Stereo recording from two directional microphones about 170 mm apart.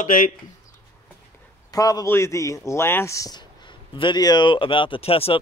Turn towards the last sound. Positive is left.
turn(degrees=35)  # may be behind; listen again after turning